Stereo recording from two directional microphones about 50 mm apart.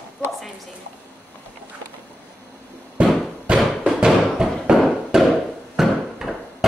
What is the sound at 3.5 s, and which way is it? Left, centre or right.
Thump, right.